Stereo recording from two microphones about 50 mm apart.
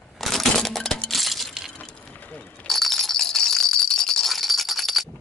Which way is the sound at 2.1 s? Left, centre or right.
Left.